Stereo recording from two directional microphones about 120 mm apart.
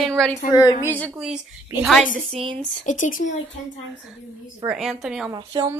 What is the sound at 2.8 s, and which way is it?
Speech, 90° left.